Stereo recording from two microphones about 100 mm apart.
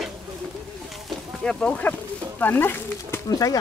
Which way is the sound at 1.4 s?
10° left (ahead or behind).